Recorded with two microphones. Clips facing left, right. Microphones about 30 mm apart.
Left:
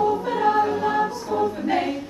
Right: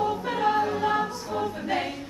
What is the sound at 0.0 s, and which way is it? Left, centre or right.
A capella, centre.